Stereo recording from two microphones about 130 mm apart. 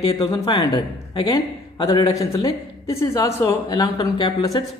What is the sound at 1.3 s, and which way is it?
A woman's voice, 30° left (ahead or behind).